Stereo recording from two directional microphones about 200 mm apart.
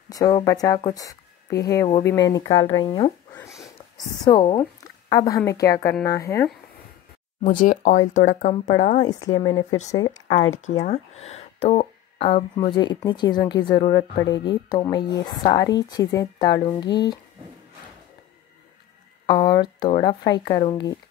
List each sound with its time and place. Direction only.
0.1 s a woman's voice: 15° left (ahead or behind)
4.2 s a woman's voice: 20° left (ahead or behind)
7.4 s speech: 40° left (ahead or behind)
9.0 s a woman's voice: 20° left (ahead or behind)
10.8 s a woman's voice: 35° left (ahead or behind)
19.2 s a woman's voice: 20° left (ahead or behind)